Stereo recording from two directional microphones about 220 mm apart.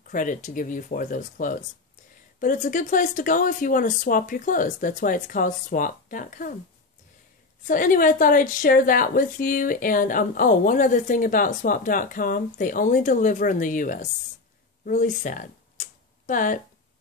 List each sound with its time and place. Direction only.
0.1 s a woman's voice: 35° left (ahead or behind)
7.6 s a woman's voice: 35° left (ahead or behind)
14.9 s tick-tock: 35° left (ahead or behind)